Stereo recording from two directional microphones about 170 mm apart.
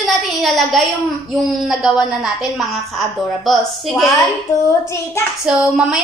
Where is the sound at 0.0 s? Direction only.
Centre (ahead or behind).